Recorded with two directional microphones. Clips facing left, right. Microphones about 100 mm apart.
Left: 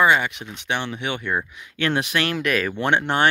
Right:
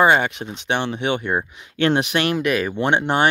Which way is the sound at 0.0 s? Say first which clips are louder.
Right 3 dB; 35° right (ahead or behind).